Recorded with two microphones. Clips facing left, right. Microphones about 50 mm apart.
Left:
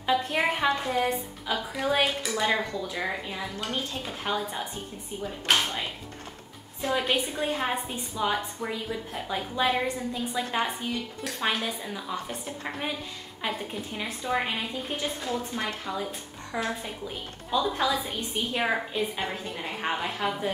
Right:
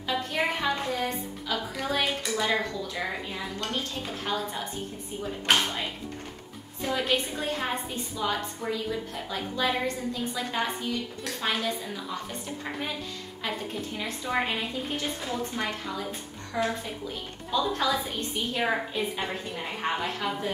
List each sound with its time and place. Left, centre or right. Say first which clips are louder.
0.0 s a sound: left 4 dB; centre
0.4 s a woman's voice: left 2 dB; centre
2.0 s speech: even; centre
2.4 s a woman's voice: left 2 dB; centre
5.2 s a woman's voice: right 1 dB; centre
15.2 s a woman's voice: even; centre
17.5 s a woman's voice: left 1 dB; centre
18.7 s a woman's voice: even; centre